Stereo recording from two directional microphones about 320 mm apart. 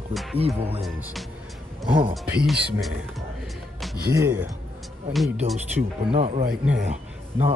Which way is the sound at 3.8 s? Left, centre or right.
Centre.